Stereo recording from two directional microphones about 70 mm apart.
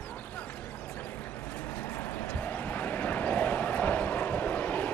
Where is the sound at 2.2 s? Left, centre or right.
Left.